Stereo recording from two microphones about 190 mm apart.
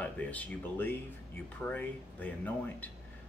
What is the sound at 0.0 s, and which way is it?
Speech, 5° left (ahead or behind).